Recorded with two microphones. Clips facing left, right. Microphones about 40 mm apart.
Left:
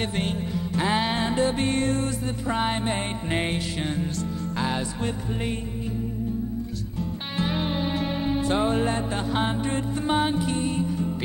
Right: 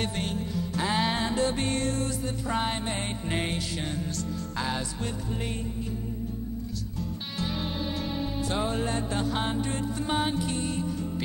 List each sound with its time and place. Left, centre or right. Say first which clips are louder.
0.0 s music: left 3 dB; left
7.0 s music: left 6 dB; left